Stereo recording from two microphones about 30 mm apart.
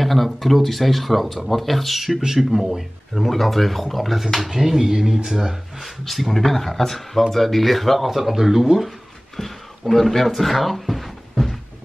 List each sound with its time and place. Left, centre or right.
0.0 s speech: centre
3.2 s speech: centre
5.8 s speech: centre
9.4 s speech: centre